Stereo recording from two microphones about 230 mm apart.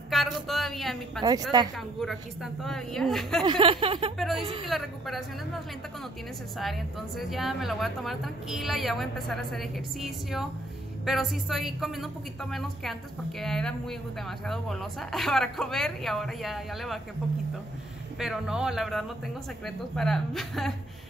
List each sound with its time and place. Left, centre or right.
0.1 s a woman's voice: centre
3.4 s a sound: right
4.6 s a woman's voice: centre
6.6 s a woman's voice: centre
18.2 s a woman's voice: centre